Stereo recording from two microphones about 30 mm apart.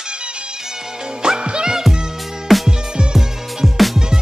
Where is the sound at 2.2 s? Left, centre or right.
Centre.